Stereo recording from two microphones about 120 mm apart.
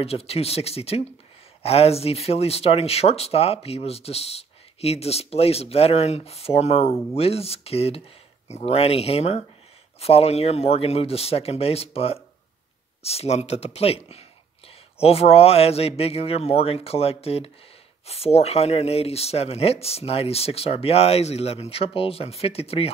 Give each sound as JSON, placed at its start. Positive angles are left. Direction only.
{"t": 0.0, "sound": "speech", "side_deg": 55}